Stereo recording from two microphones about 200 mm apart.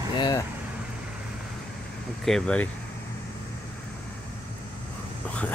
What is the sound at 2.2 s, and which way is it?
Speech, 5° left (ahead or behind).